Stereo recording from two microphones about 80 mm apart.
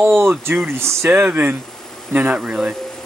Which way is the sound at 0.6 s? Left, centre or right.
Right.